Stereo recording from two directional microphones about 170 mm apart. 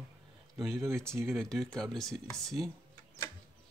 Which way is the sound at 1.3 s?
5° left (ahead or behind).